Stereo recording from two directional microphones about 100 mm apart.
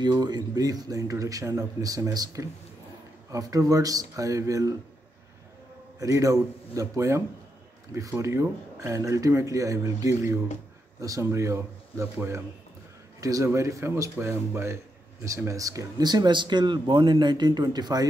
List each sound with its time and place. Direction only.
0.0 s speech: 45° right (ahead or behind)
5.9 s speech: 35° right (ahead or behind)
16.0 s speech: 45° right (ahead or behind)